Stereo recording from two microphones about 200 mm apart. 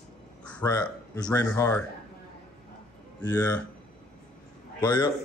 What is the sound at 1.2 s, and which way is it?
Speech, 20° left (ahead or behind).